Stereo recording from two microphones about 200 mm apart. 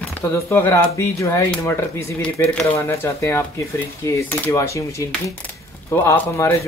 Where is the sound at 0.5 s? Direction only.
10° left (ahead or behind).